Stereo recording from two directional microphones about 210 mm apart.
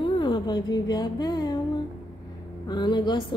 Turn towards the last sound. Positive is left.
turn(degrees=20)  # may be behind; listen again after turning